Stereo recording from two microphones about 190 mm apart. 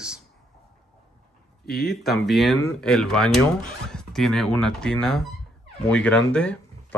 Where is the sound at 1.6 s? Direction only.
55° left (ahead or behind).